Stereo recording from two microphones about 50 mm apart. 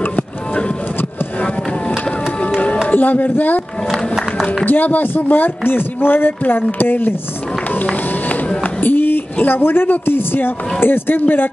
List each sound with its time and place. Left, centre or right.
2.9 s speech: left
3.9 s music: centre
4.6 s speech: left
8.8 s speech: left